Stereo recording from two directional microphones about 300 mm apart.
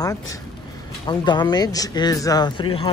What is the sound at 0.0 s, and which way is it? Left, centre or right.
Speech, centre.